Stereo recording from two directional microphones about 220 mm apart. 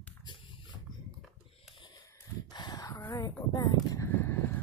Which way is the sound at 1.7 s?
20° left (ahead or behind).